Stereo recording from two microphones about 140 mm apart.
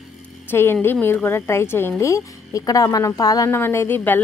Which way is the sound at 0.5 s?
15° left (ahead or behind).